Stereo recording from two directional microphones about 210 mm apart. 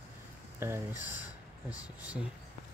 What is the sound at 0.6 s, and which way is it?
Speech, 10° right (ahead or behind).